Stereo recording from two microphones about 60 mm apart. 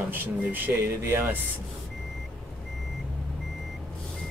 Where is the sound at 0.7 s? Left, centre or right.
Right.